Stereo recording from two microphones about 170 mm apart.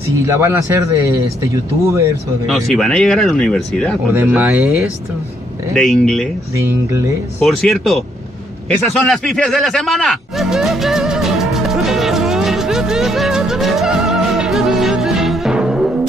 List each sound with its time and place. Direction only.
0.3 s speech: 15° right (ahead or behind)
2.4 s speech: centre (ahead or behind)
4.1 s speech: 10° right (ahead or behind)
5.7 s speech: centre (ahead or behind)
6.5 s speech: 15° right (ahead or behind)
7.4 s speech: centre (ahead or behind)
8.6 s music: centre (ahead or behind)